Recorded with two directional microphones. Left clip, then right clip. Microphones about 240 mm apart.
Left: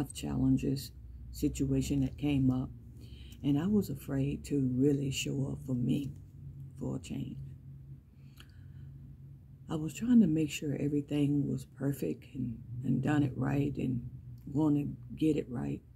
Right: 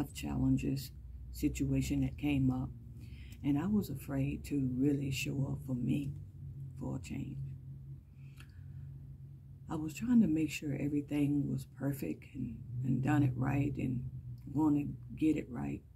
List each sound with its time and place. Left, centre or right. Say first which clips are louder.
0.0 s speech: left 3 dB; centre
3.4 s speech: left 3 dB; centre
9.7 s speech: left 3 dB; centre